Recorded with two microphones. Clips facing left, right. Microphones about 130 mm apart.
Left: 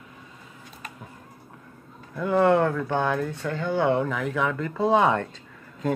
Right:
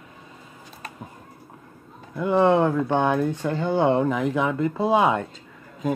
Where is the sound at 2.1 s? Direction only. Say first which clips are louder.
Right 1 dB; 20° right (ahead or behind).